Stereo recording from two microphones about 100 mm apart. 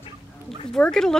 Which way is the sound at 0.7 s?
5° left (ahead or behind).